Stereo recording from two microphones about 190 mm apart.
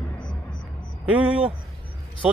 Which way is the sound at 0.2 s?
20° left (ahead or behind).